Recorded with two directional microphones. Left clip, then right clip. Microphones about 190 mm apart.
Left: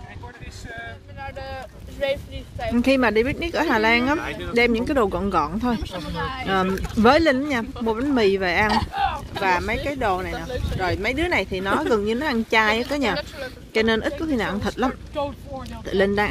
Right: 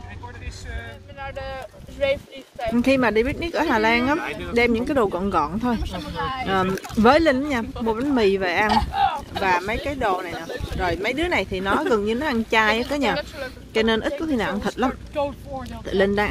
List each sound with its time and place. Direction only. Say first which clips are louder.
1.2 s speech: right 2 dB; 5° left (ahead or behind)
4.2 s speech: right 1 dB; 30° left (ahead or behind)
4.6 s speech: even; centre (ahead or behind)
6.1 s speech: right 2 dB; 35° right (ahead or behind)
6.4 s speech: left 1 dB; centre (ahead or behind)
8.9 s boat: right 3 dB; 20° right (ahead or behind)
9.4 s speech: even; centre (ahead or behind)
13.1 s speech: right 1 dB; 15° left (ahead or behind)
13.7 s speech: even; centre (ahead or behind)